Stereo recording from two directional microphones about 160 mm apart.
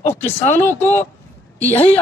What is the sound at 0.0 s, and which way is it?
Speech, 15° left (ahead or behind).